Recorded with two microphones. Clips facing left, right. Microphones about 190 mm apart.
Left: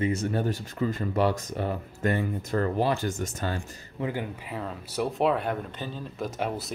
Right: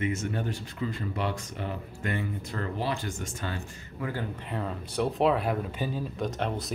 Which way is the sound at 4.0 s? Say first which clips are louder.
Left 3 dB; 20° left (ahead or behind).